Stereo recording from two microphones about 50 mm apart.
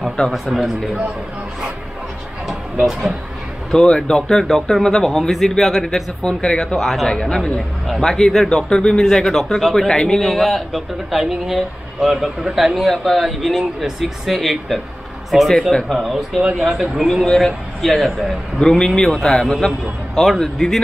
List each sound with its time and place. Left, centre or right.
0.3 s a man's voice: centre
2.4 s a sound: centre
3.8 s speech: centre
7.1 s speech: centre
8.5 s a man's voice: centre
17.3 s speech: centre
17.8 s a man's voice: centre
18.6 s a man's voice: centre